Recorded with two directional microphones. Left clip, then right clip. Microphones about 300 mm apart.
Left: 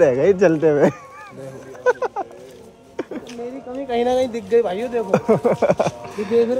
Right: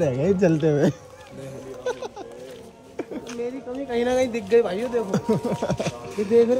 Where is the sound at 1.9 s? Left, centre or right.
Left.